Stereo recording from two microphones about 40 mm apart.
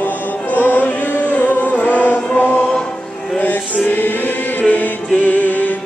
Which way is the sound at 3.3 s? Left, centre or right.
Left.